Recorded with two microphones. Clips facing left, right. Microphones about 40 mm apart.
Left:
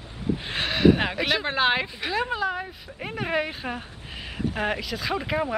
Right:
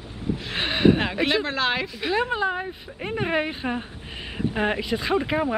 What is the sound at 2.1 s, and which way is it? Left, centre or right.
Speech, centre.